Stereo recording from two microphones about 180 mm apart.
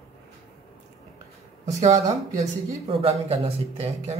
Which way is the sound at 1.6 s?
40° right (ahead or behind).